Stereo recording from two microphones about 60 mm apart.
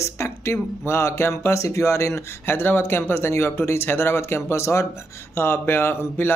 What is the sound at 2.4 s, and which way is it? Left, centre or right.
Speech, left.